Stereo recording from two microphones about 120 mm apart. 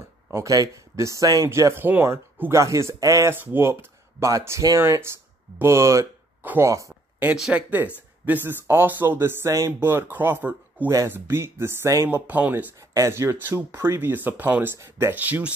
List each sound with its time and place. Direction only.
0.3 s speech: 25° right (ahead or behind)
7.3 s speech: 5° right (ahead or behind); by 12.2 s 25° right (ahead or behind)
12.3 s speech: 15° right (ahead or behind)
12.9 s speech: 25° right (ahead or behind)